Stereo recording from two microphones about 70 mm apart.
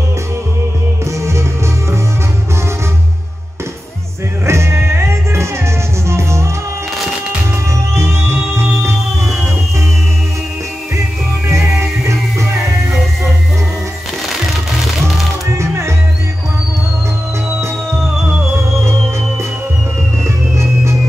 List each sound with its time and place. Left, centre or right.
4.5 s music: right
7.9 s music: right
15.0 s music: centre
15.5 s music: right